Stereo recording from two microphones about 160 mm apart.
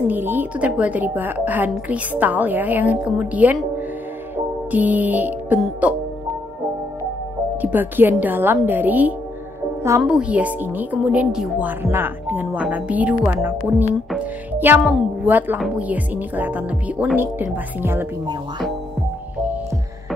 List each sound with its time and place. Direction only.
0.1 s speech: 10° right (ahead or behind)
4.6 s speech: 10° right (ahead or behind)
7.6 s speech: 10° right (ahead or behind)
14.1 s music: 10° right (ahead or behind)
14.8 s a woman's voice: centre (ahead or behind)
15.2 s speech: 10° right (ahead or behind)